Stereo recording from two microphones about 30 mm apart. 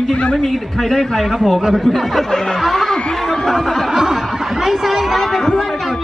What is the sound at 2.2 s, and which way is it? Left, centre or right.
Speech, left.